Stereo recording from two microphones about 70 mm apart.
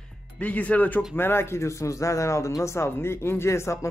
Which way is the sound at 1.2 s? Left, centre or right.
Left.